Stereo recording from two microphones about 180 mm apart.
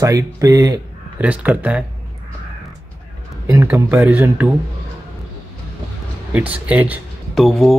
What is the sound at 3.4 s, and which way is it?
Speech, 15° right (ahead or behind).